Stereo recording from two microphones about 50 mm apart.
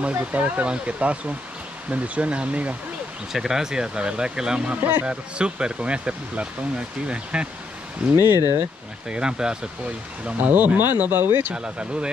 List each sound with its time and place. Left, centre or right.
0.1 s speech: right
3.3 s speech: centre
8.2 s speech: right
9.1 s speech: centre
10.2 s speech: right
11.5 s speech: centre